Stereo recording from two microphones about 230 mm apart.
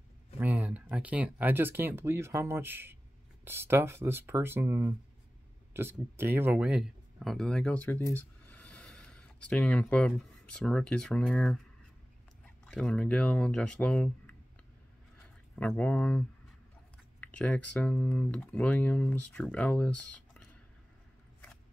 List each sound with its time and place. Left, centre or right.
0.4 s speech: centre
12.6 s speech: centre
15.5 s speech: centre